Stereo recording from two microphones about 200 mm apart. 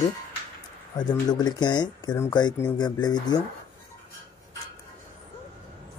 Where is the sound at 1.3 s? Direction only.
20° left (ahead or behind).